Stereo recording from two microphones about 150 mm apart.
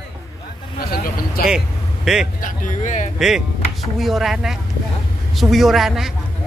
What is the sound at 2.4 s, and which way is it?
Speech, 60° left (ahead or behind).